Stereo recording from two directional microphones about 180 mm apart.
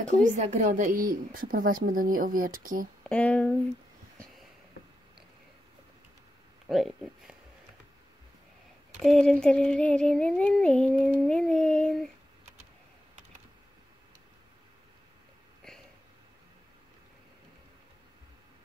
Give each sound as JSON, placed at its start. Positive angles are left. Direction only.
{"t": 0.3, "sound": "speech", "side_deg": -45}
{"t": 3.0, "sound": "speech", "side_deg": 5}
{"t": 6.7, "sound": "speech", "side_deg": 0}
{"t": 9.0, "sound": "a sound", "side_deg": 0}